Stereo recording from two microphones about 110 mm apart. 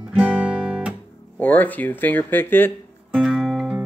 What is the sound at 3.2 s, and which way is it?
Music, centre (ahead or behind).